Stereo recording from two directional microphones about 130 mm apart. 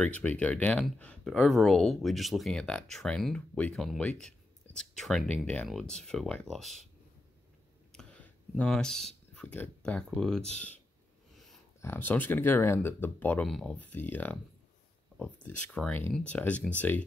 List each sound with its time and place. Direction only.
0.0 s speech: 10° left (ahead or behind)
7.9 s speech: 5° left (ahead or behind)
11.8 s speech: 15° left (ahead or behind)
13.5 s speech: centre (ahead or behind)
13.7 s speech: 15° left (ahead or behind)
15.4 s speech: 10° left (ahead or behind)